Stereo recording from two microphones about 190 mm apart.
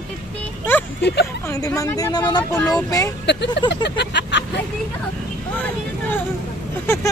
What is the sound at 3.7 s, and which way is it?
Vehicle, 65° left (ahead or behind).